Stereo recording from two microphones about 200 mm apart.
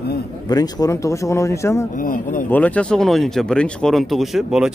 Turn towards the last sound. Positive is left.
turn(degrees=0)  # may be behind; listen again after turning